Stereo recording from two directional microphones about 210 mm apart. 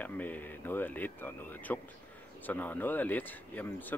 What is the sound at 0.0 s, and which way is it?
Speech, 10° left (ahead or behind).